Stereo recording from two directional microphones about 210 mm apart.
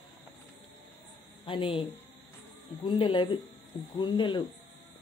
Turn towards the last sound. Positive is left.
turn(degrees=20)  # may be behind; listen again after turning